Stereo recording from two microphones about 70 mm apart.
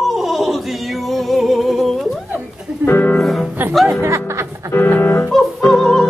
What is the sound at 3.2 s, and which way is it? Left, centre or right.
Music, centre.